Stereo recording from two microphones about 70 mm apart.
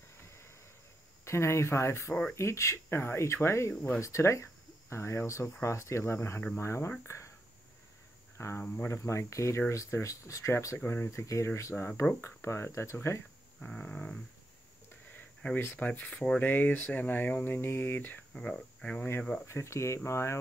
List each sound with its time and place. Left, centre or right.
0.3 s a sound: left
1.2 s speech: left
8.4 s speech: left
13.7 s a sound: centre
15.5 s speech: left
18.3 s speech: centre
18.9 s speech: left